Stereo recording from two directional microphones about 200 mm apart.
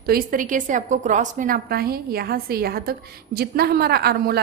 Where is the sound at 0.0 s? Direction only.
45° right (ahead or behind).